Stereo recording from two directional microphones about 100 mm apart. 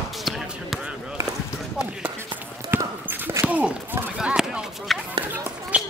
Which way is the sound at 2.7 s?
25° right (ahead or behind).